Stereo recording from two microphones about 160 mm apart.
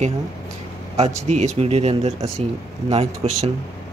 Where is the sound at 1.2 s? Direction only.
45° right (ahead or behind).